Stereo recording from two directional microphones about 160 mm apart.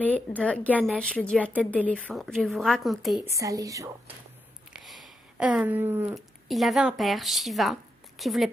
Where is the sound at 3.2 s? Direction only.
20° right (ahead or behind).